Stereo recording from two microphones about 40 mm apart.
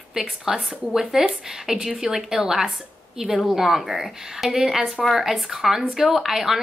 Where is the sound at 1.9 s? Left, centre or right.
Right.